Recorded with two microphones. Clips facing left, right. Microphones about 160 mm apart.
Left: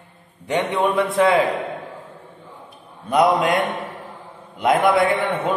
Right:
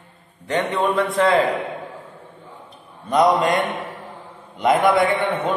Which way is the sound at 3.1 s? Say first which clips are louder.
Even; 5° left (ahead or behind).